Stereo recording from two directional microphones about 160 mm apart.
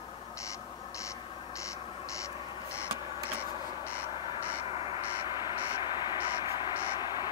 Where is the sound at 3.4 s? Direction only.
15° left (ahead or behind).